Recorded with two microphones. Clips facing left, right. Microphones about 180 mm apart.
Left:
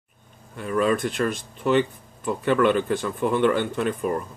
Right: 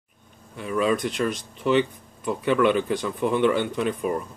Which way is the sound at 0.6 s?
45° left (ahead or behind).